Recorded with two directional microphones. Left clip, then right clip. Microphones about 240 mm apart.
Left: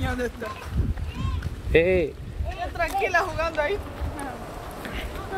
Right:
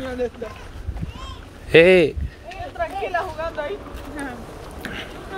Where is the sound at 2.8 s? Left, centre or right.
Left.